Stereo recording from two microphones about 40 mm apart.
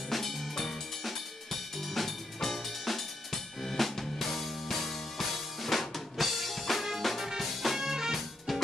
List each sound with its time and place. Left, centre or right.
0.1 s drum kit: centre
7.2 s music: centre